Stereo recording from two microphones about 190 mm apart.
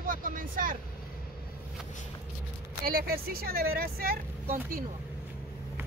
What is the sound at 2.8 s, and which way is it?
Speech, 50° right (ahead or behind).